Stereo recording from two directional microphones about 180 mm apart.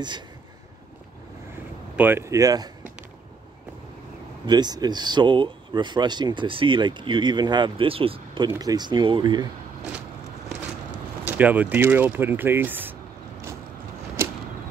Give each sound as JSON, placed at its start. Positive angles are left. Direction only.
{"t": 2.0, "sound": "speech", "side_deg": -10}
{"t": 4.5, "sound": "speech", "side_deg": -25}
{"t": 8.5, "sound": "speech", "side_deg": -20}
{"t": 11.2, "sound": "speech", "side_deg": -10}